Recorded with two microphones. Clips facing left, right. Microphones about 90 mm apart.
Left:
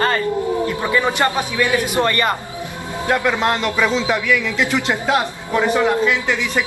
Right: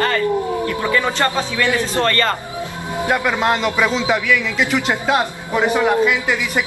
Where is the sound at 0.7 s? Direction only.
20° left (ahead or behind).